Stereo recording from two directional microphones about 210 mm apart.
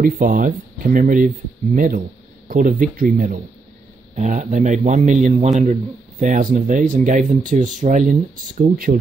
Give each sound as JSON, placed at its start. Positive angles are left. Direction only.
{"t": 0.0, "sound": "a man's voice", "side_deg": -40}
{"t": 2.4, "sound": "a man's voice", "side_deg": -40}